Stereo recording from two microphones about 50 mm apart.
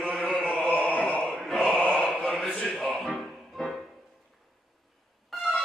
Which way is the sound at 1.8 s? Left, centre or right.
Centre.